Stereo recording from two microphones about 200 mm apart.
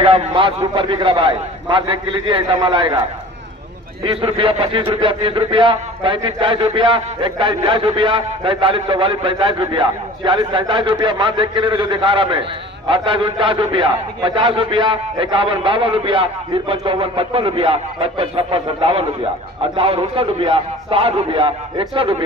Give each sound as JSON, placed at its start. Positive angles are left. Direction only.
{"t": 0.0, "sound": "a man's voice", "side_deg": -25}
{"t": 4.0, "sound": "a man's voice", "side_deg": -30}